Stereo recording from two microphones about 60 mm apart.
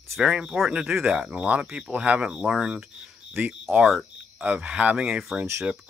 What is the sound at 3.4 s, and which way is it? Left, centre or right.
Speech, right.